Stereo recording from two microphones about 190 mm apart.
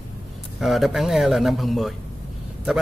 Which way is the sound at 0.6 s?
Centre (ahead or behind).